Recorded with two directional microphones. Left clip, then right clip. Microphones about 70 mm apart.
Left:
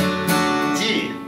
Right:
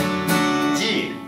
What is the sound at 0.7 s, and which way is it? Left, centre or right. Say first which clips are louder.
Music: left 1 dB; centre.